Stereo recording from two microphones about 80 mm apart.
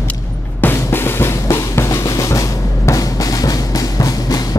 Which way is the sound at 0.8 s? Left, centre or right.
Left.